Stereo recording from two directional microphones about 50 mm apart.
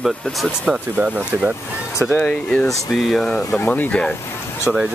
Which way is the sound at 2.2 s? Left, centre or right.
Left.